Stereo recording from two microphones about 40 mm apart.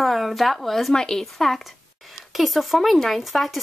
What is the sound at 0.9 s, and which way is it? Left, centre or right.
A woman's voice, centre.